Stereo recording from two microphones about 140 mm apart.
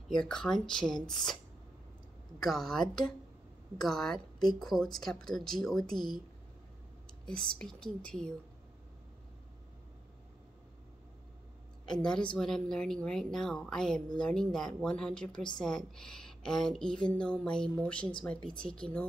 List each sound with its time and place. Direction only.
0.1 s speech: 5° left (ahead or behind)
2.4 s speech: centre (ahead or behind)
7.2 s speech: 5° left (ahead or behind)
12.0 s speech: 5° left (ahead or behind)